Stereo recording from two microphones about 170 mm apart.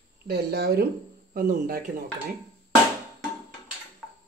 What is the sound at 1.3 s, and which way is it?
Speech, 60° right (ahead or behind).